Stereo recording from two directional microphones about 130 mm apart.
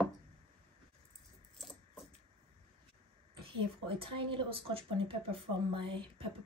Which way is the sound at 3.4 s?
45° right (ahead or behind).